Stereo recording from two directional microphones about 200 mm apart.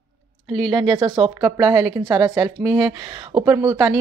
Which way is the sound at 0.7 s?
20° right (ahead or behind).